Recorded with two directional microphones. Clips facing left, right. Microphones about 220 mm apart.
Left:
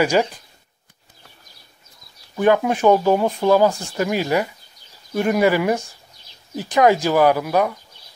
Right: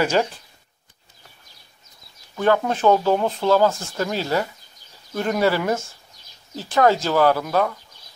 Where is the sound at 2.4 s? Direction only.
15° left (ahead or behind).